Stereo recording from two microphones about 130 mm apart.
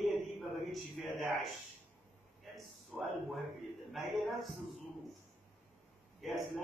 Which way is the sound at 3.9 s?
Centre (ahead or behind).